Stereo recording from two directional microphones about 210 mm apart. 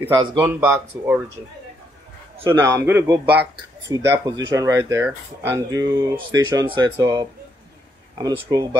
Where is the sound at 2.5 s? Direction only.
10° right (ahead or behind).